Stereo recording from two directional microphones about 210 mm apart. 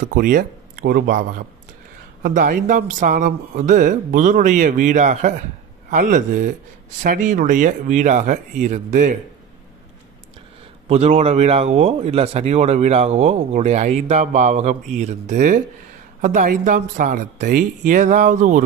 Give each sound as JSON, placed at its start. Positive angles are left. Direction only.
{"t": 0.0, "sound": "speech", "side_deg": -40}
{"t": 10.9, "sound": "speech", "side_deg": -30}